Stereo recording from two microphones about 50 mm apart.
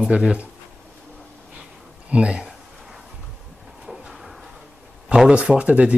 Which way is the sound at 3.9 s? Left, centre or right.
Centre.